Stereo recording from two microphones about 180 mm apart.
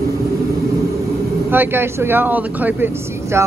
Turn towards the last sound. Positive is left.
turn(degrees=-15)  # may be behind; listen again after turning